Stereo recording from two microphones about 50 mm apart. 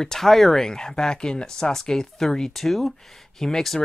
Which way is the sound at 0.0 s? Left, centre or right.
Centre.